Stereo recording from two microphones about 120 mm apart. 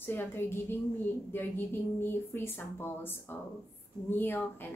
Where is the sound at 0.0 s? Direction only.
15° left (ahead or behind).